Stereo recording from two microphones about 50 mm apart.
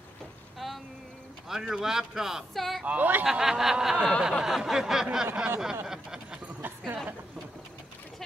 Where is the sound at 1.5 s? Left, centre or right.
Centre.